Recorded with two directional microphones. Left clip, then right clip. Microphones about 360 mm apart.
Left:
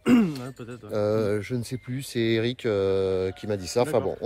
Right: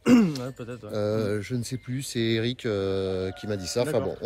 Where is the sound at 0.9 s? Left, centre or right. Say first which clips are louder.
Left 3 dB; centre.